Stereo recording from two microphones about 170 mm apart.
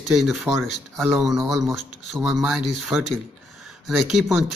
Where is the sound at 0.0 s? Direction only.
Centre (ahead or behind).